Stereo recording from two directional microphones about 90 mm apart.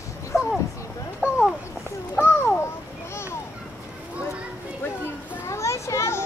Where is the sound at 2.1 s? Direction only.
20° left (ahead or behind).